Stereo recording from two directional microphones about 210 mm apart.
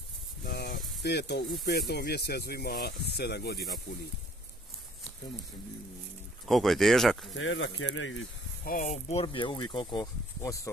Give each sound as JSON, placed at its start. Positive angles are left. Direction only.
{"t": 0.4, "sound": "a sound", "side_deg": 50}
{"t": 1.0, "sound": "speech", "side_deg": 50}
{"t": 6.4, "sound": "speech", "side_deg": 0}
{"t": 7.3, "sound": "speech", "side_deg": 60}
{"t": 8.6, "sound": "speech", "side_deg": 35}